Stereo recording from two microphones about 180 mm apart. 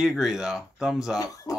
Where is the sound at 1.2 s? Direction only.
20° left (ahead or behind).